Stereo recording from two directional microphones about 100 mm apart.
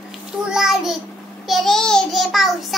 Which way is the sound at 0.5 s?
5° right (ahead or behind).